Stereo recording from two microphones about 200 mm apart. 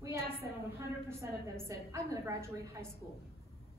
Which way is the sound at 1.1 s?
15° right (ahead or behind).